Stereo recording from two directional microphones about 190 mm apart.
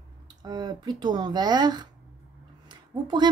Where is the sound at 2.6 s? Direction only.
20° right (ahead or behind).